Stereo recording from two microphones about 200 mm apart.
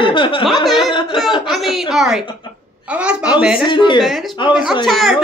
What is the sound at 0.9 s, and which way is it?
Speech, 25° left (ahead or behind).